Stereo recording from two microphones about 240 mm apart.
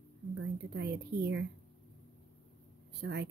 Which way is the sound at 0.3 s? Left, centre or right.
Right.